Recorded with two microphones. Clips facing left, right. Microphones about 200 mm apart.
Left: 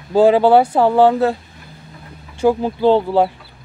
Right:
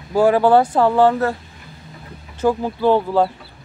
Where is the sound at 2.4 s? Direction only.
20° left (ahead or behind).